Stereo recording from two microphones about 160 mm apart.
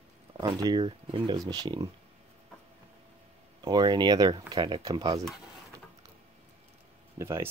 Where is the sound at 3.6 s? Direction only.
25° right (ahead or behind).